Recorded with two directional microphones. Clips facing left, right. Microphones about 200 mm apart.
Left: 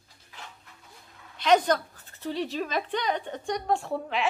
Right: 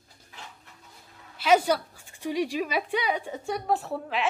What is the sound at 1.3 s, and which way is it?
A woman's voice, 5° right (ahead or behind).